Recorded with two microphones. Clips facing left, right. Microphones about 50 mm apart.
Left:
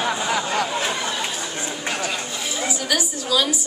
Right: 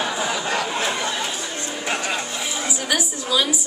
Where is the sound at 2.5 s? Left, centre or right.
Centre.